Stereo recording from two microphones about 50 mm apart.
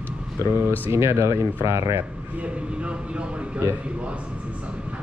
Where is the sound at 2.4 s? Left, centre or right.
Right.